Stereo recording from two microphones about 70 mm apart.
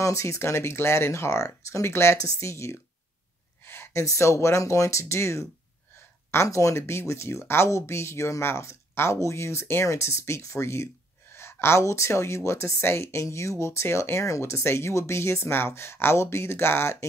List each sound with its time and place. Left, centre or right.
0.0 s speech: left
3.6 s gasp: left
4.0 s speech: left